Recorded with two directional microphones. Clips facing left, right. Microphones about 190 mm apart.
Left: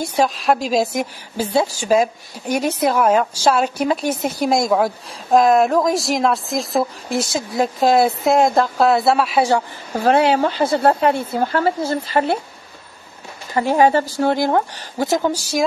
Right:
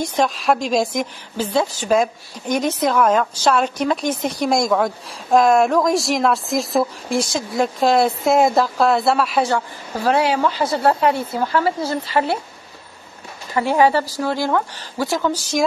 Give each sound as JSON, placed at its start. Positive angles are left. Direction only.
{"t": 0.0, "sound": "a woman's voice", "side_deg": 5}
{"t": 9.9, "sound": "speech", "side_deg": 50}
{"t": 13.6, "sound": "speech", "side_deg": 40}
{"t": 15.0, "sound": "a woman's voice", "side_deg": 20}